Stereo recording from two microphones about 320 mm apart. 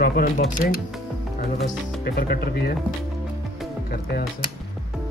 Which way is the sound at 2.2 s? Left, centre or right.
Left.